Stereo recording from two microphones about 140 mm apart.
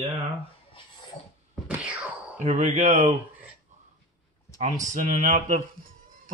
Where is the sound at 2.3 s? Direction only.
60° right (ahead or behind).